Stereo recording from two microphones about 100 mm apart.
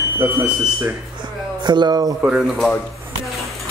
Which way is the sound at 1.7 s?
45° right (ahead or behind).